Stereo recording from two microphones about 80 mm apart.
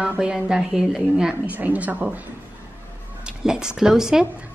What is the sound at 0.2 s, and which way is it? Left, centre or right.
Speech, centre.